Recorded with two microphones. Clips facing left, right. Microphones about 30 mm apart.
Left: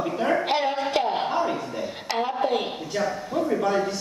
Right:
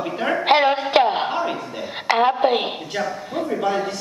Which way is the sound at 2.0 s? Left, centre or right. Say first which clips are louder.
Right 10 dB; right.